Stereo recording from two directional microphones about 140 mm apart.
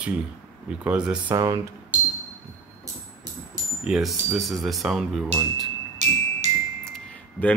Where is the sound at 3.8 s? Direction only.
5° right (ahead or behind).